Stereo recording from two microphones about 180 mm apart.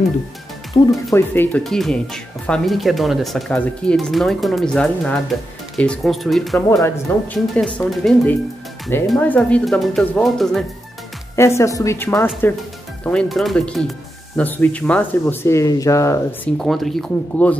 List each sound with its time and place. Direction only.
0.8 s speech: 20° left (ahead or behind)
1.1 s speech: 10° left (ahead or behind)
11.3 s speech: 15° left (ahead or behind)
16.5 s speech: centre (ahead or behind)